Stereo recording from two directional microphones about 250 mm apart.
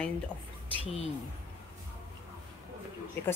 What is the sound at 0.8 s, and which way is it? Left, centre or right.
Speech, left.